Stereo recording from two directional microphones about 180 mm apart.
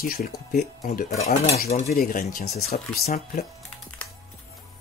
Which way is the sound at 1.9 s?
50° left (ahead or behind).